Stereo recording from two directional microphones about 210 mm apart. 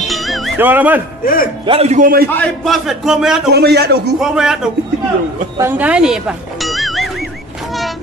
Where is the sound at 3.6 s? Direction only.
50° right (ahead or behind).